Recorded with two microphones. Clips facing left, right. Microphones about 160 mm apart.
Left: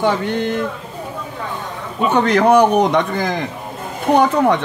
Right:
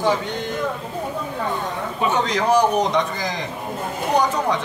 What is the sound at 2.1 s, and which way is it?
Speech, 60° left (ahead or behind).